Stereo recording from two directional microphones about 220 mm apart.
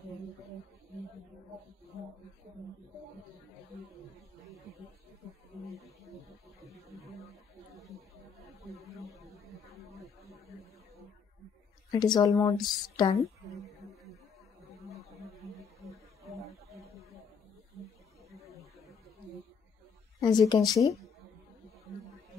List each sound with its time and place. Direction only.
11.9 s speech: 20° left (ahead or behind)
20.2 s speech: 20° left (ahead or behind)